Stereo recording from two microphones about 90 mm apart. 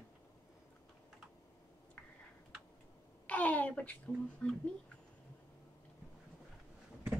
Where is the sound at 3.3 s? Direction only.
15° left (ahead or behind).